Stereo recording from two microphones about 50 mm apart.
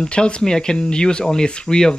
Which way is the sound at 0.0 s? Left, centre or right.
Centre.